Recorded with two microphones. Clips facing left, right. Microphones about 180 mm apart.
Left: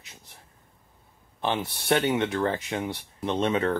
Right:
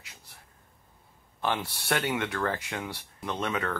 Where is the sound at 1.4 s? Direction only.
20° left (ahead or behind).